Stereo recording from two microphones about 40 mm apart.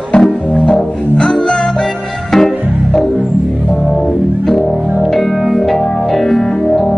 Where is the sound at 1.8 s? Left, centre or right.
Centre.